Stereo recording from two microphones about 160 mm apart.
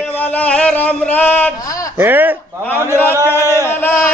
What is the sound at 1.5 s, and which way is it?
Speech, 20° left (ahead or behind).